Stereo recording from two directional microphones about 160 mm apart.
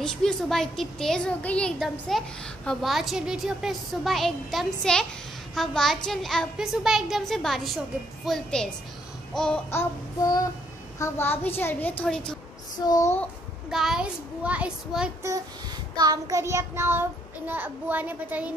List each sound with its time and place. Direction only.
0.0 s a woman's voice: 5° left (ahead or behind)
9.3 s babbling: 5° left (ahead or behind)
9.7 s child singing: 20° left (ahead or behind)
11.0 s a woman's voice: 15° left (ahead or behind)
12.8 s child singing: 20° left (ahead or behind)
13.7 s a woman's voice: 5° right (ahead or behind)
16.0 s child singing: 20° right (ahead or behind)